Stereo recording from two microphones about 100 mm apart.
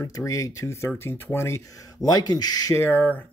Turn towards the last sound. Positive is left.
turn(degrees=20)  # may be behind; listen again after turning